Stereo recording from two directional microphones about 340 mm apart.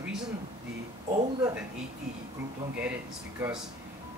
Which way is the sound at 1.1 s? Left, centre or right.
Centre.